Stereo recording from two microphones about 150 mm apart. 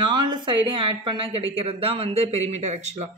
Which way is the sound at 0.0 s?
30° right (ahead or behind).